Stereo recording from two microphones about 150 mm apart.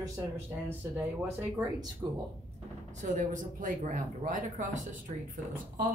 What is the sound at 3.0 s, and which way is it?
Speech, 55° right (ahead or behind).